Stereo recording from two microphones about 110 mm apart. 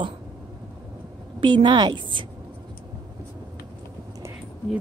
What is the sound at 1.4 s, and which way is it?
Speech, 45° right (ahead or behind).